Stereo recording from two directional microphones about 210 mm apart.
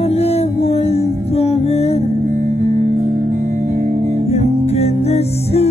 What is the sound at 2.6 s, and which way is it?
Music, 35° right (ahead or behind).